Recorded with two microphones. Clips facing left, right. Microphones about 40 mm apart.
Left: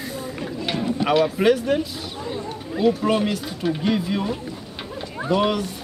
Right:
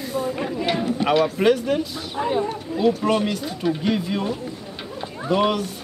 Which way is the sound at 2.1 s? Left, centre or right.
Right.